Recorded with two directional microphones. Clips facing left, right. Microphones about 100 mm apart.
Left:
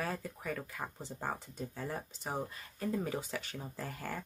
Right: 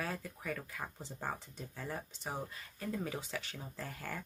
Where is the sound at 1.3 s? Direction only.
35° left (ahead or behind).